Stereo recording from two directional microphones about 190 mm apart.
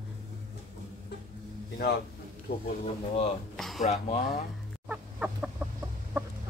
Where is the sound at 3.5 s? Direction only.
Centre (ahead or behind).